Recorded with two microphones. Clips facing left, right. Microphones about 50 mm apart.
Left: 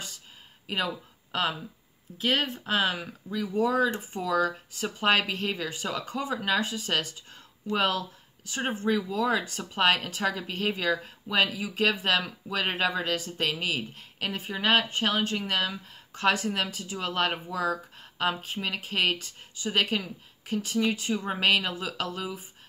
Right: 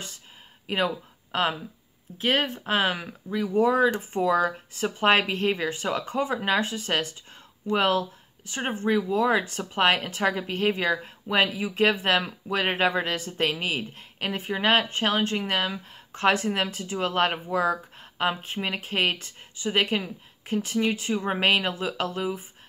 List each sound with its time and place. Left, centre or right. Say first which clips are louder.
0.7 s a woman's voice: right 4 dB; right